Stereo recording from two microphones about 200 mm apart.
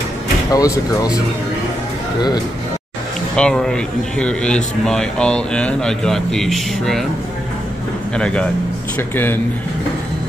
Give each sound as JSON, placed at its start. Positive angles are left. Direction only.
{"t": 0.5, "sound": "speech", "side_deg": 15}
{"t": 3.3, "sound": "a man's voice", "side_deg": 5}
{"t": 8.2, "sound": "a man's voice", "side_deg": 5}